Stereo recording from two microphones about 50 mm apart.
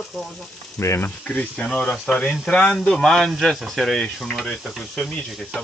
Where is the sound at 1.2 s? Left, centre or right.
Left.